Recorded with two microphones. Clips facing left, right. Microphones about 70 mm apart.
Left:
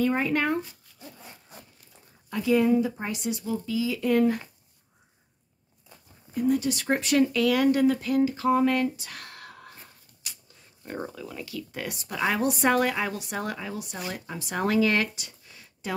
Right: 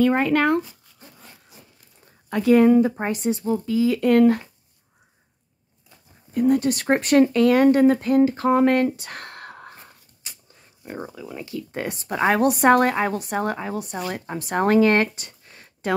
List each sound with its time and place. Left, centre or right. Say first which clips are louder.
0.0 s speech: right 6 dB; right
2.2 s speech: right 7 dB; right
6.3 s speech: right 6 dB; right
10.2 s a sound: right 1 dB; right
10.8 s speech: right 1 dB; centre
11.3 s a woman's voice: right 9 dB; right
12.4 s a woman's voice: right 7 dB; right